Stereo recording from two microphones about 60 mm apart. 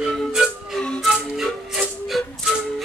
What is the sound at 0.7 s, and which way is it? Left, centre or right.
Music, centre.